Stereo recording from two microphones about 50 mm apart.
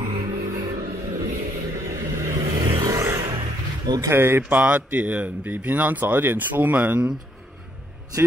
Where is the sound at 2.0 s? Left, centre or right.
Right.